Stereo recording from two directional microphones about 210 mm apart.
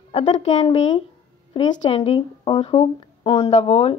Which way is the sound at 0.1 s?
35° left (ahead or behind).